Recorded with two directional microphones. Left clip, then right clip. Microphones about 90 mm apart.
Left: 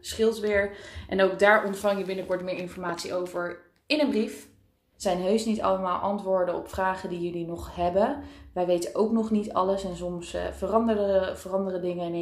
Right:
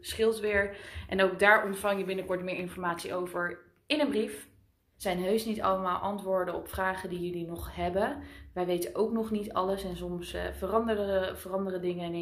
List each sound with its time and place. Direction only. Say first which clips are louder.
0.1 s a woman's voice: left 3 dB; 40° left (ahead or behind)
5.0 s a woman's voice: left 4 dB; 20° left (ahead or behind)